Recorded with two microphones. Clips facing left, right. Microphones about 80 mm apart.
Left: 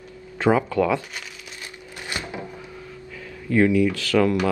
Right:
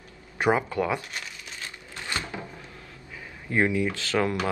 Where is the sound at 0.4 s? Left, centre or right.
Right.